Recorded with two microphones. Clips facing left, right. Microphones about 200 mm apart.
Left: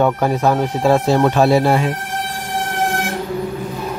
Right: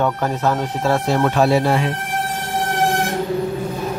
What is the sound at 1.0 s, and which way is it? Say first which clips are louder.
Speech: left 3 dB; 30° left (ahead or behind).